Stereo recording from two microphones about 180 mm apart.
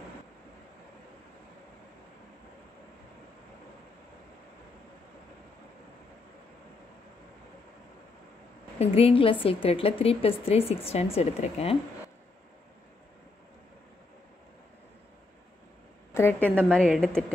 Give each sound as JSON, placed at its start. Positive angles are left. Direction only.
{"t": 8.7, "sound": "a woman's voice", "side_deg": 30}
{"t": 16.1, "sound": "a woman's voice", "side_deg": 15}